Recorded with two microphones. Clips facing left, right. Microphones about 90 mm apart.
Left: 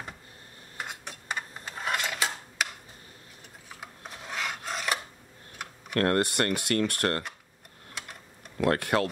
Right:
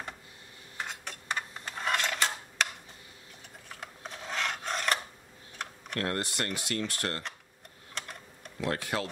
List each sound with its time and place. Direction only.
0.7 s a sound: 5° left (ahead or behind)
3.6 s filing: 5° left (ahead or behind)
5.9 s speech: 55° left (ahead or behind)
8.0 s typing: 5° left (ahead or behind)
8.5 s speech: 60° left (ahead or behind)